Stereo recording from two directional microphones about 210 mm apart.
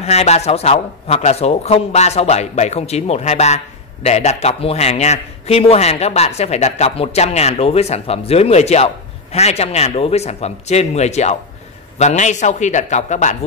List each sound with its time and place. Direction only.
0.0 s speech: 30° left (ahead or behind)